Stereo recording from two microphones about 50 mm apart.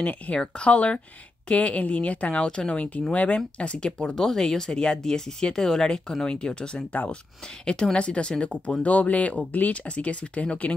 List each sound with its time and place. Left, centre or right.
0.4 s speech: left